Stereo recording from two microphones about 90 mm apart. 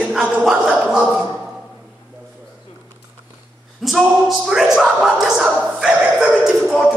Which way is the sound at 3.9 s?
Centre (ahead or behind).